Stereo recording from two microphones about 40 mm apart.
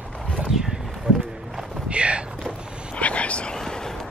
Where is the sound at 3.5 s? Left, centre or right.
Centre.